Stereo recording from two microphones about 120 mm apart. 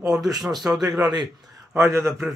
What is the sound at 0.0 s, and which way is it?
Speech, 5° right (ahead or behind).